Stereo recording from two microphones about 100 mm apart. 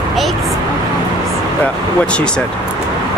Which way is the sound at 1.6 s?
10° left (ahead or behind).